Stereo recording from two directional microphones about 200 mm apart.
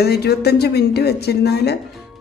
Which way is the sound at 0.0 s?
55° left (ahead or behind).